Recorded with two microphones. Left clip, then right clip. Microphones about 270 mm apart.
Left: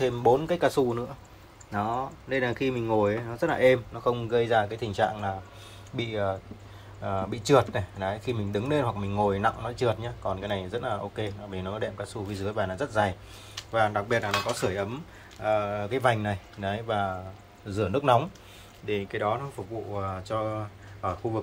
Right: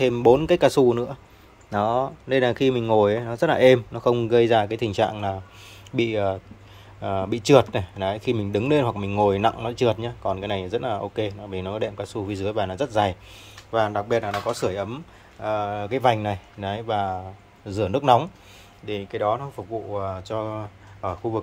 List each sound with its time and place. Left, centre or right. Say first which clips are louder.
0.0 s speech: right 6 dB; right; by 21.4 s centre